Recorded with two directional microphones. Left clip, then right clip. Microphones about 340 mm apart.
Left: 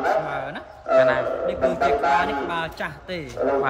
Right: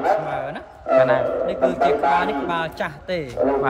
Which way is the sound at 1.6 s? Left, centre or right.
Centre.